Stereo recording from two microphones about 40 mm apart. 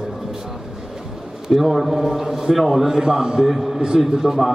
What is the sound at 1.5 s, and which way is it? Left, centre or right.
A man's voice, centre.